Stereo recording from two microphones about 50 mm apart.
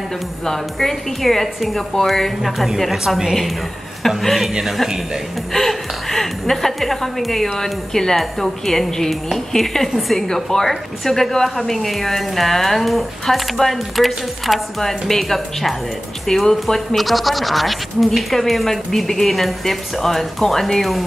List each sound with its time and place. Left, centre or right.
0.5 s a woman's voice: centre
4.2 s a woman's voice: centre
5.5 s a woman's voice: centre